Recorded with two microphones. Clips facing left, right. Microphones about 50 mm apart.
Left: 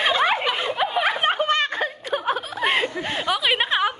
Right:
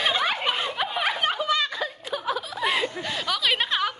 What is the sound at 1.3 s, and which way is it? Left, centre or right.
Chuckle, left.